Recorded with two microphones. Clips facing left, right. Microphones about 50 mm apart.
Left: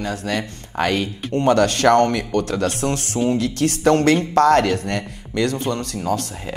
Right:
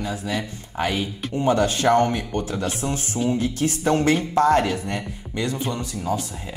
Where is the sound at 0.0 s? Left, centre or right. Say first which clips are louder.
Left 3 dB; left.